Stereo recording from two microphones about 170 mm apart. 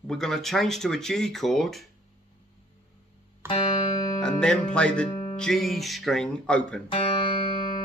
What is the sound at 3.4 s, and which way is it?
Music, 15° right (ahead or behind).